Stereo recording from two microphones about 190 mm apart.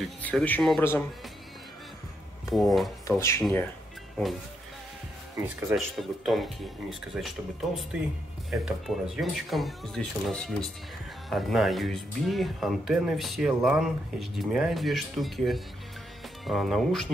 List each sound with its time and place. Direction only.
0.0 s speech: 5° left (ahead or behind)
2.5 s speech: centre (ahead or behind)
3.1 s speech: 15° left (ahead or behind)
5.8 s speech: centre (ahead or behind)